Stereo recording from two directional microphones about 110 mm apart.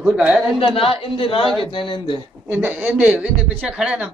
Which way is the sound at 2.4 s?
20° right (ahead or behind).